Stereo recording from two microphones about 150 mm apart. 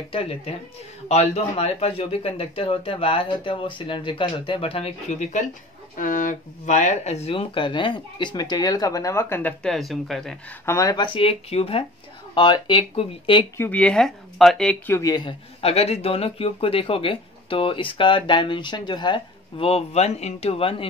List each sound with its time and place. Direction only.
0.1 s speech: 40° left (ahead or behind)
5.9 s speech: 60° left (ahead or behind); by 10.3 s centre (ahead or behind)
10.6 s speech: 20° left (ahead or behind)
11.1 s speech: 40° left (ahead or behind)
12.4 s speech: 30° left (ahead or behind)
13.6 s speech: 10° left (ahead or behind)
15.0 s speech: 25° left (ahead or behind)
15.6 s speech: 45° left (ahead or behind)